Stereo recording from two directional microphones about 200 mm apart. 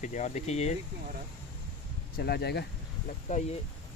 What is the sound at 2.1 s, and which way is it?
Speech, 50° left (ahead or behind).